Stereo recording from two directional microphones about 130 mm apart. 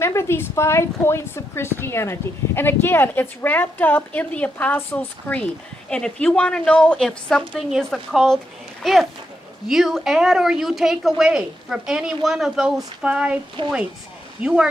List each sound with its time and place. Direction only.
0.0 s a woman's voice: 20° left (ahead or behind); by 13.4 s 10° right (ahead or behind)
13.6 s speech: 35° right (ahead or behind)
14.4 s a woman's voice: 5° right (ahead or behind)